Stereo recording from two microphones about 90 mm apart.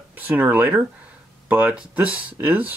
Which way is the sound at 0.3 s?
20° right (ahead or behind).